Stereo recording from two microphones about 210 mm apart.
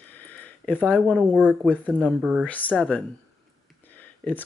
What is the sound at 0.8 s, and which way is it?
Speech, 5° left (ahead or behind).